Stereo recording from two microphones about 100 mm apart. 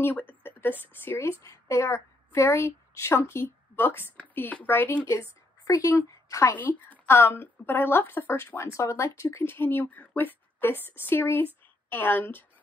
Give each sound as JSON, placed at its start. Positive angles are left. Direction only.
{"t": 0.0, "sound": "a woman's voice", "side_deg": 20}
{"t": 5.0, "sound": "a woman's voice", "side_deg": 30}
{"t": 6.5, "sound": "a woman's voice", "side_deg": 15}